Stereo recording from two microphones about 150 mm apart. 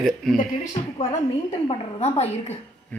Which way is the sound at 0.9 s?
40° left (ahead or behind).